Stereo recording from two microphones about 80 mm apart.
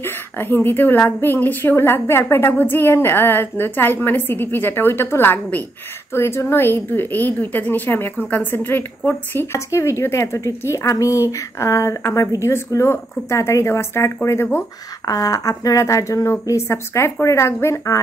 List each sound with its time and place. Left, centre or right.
0.0 s a woman's voice: left
9.7 s a woman's voice: left
15.0 s a woman's voice: left